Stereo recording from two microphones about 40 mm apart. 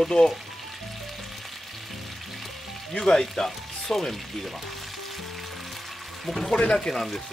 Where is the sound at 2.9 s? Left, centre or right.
Centre.